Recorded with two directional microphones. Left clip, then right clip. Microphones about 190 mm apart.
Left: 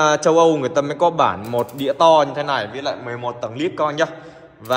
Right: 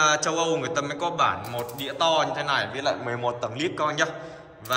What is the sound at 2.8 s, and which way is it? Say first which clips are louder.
A man's voice: left 2 dB; 10° right (ahead or behind).